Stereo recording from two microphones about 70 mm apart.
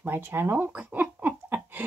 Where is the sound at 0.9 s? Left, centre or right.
Right.